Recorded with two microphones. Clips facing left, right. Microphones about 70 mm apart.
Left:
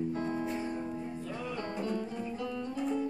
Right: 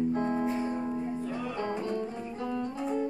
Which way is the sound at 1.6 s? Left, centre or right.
Right.